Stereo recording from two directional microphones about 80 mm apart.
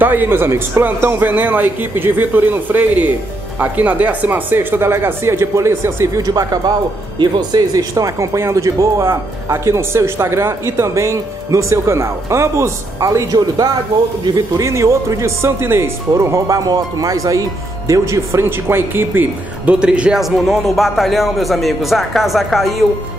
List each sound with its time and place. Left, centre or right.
0.0 s speech: right
6.2 s speech: right
14.6 s speech: right
16.1 s speech: right
19.7 s a man's voice: centre